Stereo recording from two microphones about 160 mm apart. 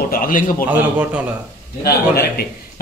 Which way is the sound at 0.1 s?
60° left (ahead or behind).